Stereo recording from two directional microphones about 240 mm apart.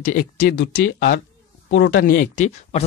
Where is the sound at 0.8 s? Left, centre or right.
Left.